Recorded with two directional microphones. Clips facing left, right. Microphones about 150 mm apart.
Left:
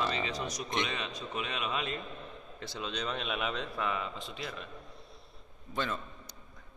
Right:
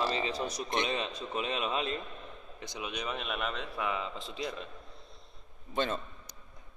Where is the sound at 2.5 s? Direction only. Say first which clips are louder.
Left 1 dB; 15° right (ahead or behind).